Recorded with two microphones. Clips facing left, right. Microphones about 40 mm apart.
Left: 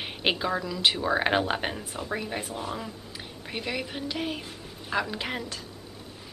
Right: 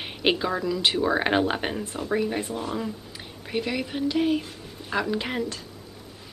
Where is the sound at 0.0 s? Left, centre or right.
Centre.